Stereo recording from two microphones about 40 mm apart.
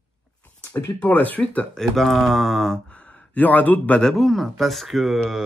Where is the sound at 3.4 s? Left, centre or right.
Left.